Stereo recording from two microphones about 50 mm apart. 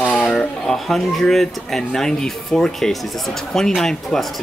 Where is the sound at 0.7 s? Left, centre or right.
Centre.